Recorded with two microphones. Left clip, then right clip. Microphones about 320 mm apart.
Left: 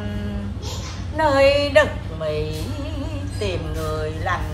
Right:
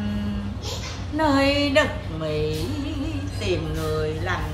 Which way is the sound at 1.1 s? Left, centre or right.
Left.